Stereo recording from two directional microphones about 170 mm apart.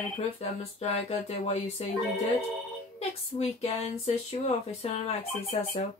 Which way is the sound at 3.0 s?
35° left (ahead or behind).